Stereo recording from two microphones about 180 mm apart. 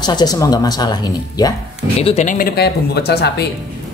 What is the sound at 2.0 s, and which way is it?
Speech, 35° left (ahead or behind).